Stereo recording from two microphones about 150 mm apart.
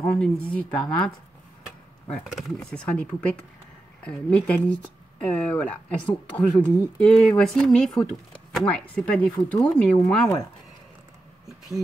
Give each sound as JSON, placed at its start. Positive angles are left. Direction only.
{"t": 0.0, "sound": "speech", "side_deg": 10}
{"t": 2.2, "sound": "speech", "side_deg": 0}